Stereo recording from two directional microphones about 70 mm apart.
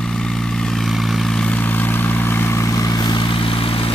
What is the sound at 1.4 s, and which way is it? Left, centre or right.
Vehicle, left.